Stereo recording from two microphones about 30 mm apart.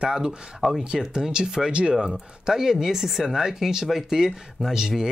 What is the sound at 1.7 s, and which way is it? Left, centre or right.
Speech, right.